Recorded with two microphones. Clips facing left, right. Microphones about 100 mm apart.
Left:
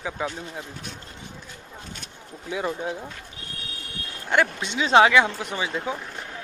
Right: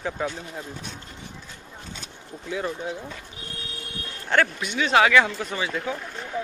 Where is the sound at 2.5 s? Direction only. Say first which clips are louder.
Left 1 dB; 10° left (ahead or behind).